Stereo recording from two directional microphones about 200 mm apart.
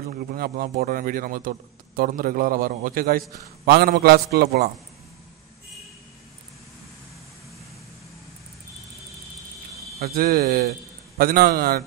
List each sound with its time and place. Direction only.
0.1 s a man's voice: 45° right (ahead or behind)
9.9 s a man's voice: 50° right (ahead or behind)